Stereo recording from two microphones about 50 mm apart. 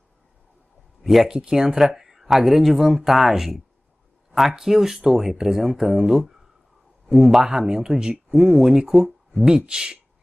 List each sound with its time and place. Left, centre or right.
1.0 s speech: centre